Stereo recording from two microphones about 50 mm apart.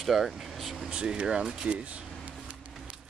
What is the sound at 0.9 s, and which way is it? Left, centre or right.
Speech, centre.